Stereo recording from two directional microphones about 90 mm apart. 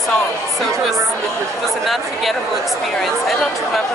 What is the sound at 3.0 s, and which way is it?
Speech, centre (ahead or behind).